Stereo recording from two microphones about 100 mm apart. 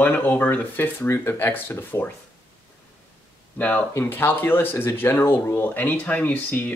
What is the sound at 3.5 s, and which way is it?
Speech, 15° left (ahead or behind).